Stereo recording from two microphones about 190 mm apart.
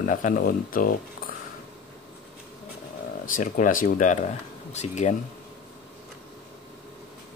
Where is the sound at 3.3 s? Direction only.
45° left (ahead or behind).